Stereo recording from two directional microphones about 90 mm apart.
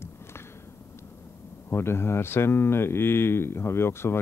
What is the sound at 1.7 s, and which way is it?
Speech, 30° left (ahead or behind).